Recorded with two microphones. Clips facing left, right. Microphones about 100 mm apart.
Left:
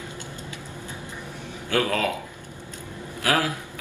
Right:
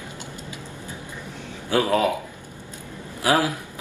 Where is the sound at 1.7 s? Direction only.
20° right (ahead or behind).